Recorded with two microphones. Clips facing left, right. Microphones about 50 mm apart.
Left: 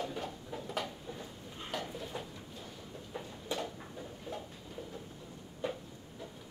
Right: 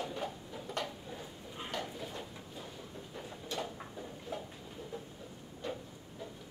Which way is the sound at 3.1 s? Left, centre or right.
Centre.